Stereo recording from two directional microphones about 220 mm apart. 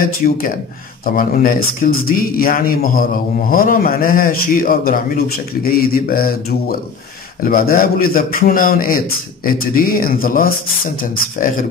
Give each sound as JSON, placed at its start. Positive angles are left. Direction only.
{"t": 0.0, "sound": "speech", "side_deg": 40}